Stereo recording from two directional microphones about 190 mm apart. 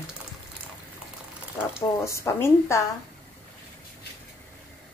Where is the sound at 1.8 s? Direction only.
15° left (ahead or behind).